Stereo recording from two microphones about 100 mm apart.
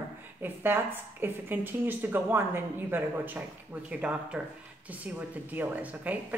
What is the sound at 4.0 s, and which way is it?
Speech, 10° right (ahead or behind).